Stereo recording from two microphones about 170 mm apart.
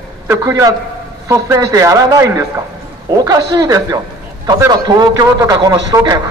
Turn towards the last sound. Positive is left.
turn(degrees=-25)  # may be behind; listen again after turning